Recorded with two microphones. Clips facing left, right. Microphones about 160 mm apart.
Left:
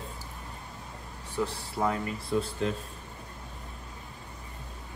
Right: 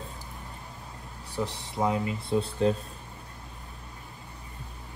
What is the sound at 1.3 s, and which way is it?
Speech, 15° right (ahead or behind).